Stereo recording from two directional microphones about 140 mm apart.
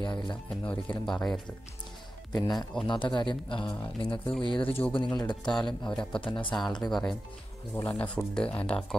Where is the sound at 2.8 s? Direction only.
35° left (ahead or behind).